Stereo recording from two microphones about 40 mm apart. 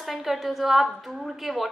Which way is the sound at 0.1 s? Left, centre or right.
Centre.